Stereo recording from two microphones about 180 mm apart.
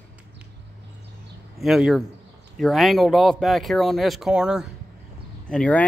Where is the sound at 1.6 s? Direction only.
5° right (ahead or behind).